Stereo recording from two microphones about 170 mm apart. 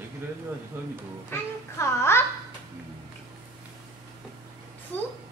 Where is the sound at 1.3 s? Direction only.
15° left (ahead or behind).